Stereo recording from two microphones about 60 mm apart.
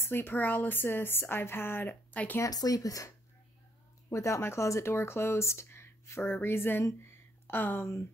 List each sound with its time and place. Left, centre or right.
0.0 s speech: left
2.4 s speech: left
4.1 s speech: left
6.2 s speech: left
7.0 s a sound: left
7.8 s speech: left